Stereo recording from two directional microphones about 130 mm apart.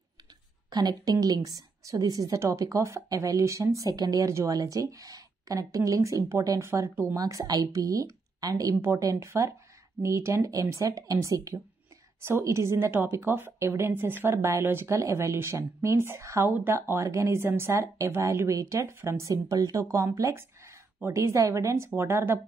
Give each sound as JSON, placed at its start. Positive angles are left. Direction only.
{"t": 0.7, "sound": "a woman's voice", "side_deg": -30}